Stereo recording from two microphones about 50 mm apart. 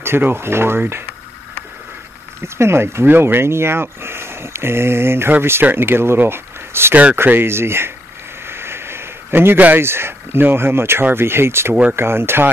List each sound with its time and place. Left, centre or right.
0.0 s speech: right
2.4 s speech: right
3.1 s speech: right
8.5 s a sound: right
9.8 s speech: right